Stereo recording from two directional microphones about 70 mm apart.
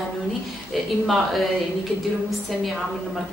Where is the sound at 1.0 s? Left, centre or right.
Centre.